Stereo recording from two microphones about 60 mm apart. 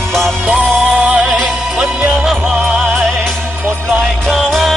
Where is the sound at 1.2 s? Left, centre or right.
Centre.